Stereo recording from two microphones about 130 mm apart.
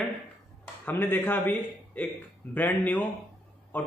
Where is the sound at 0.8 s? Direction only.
15° left (ahead or behind).